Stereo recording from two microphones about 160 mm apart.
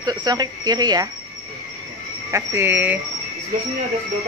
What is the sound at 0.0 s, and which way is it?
A woman's voice, 25° right (ahead or behind).